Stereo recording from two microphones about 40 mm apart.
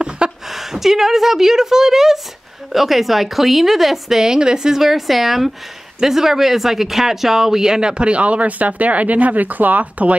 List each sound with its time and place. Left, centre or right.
0.5 s a woman's voice: centre
4.2 s speech: centre
8.0 s speech: right